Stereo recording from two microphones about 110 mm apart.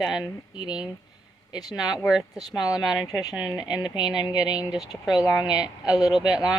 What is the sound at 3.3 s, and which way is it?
Speech, 10° right (ahead or behind).